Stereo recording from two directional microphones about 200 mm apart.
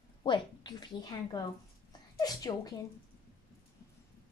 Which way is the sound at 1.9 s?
20° left (ahead or behind).